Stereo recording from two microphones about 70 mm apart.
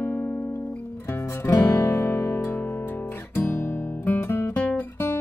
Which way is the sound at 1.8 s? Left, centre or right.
Left.